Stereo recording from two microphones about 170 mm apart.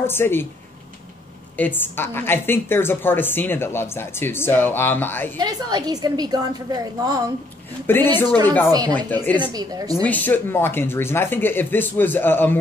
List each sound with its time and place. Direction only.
0.0 s speech: 15° left (ahead or behind)
1.6 s a woman's voice: 10° left (ahead or behind)
5.4 s a woman's voice: 25° right (ahead or behind)
7.8 s a woman's voice: 10° left (ahead or behind)
9.4 s a woman's voice: 25° right (ahead or behind)
10.0 s a woman's voice: 10° left (ahead or behind)